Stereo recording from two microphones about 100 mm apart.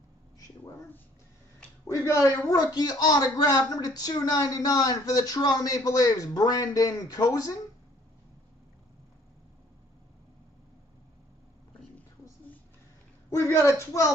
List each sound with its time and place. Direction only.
1.9 s a man's voice: 30° left (ahead or behind)
13.3 s a man's voice: 30° left (ahead or behind)